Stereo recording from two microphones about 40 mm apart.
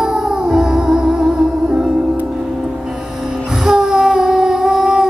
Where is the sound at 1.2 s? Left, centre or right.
Centre.